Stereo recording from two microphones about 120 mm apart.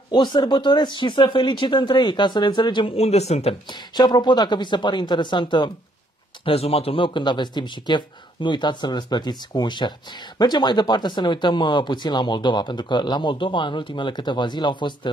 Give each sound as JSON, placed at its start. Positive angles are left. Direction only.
{"t": 0.1, "sound": "speech", "side_deg": 40}
{"t": 3.9, "sound": "speech", "side_deg": 35}
{"t": 6.4, "sound": "speech", "side_deg": 55}